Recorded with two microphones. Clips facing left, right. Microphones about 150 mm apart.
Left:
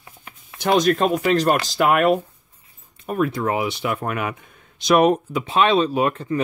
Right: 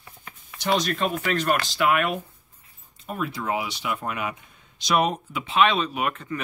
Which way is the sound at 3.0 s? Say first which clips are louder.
Left 8 dB; 55° left (ahead or behind).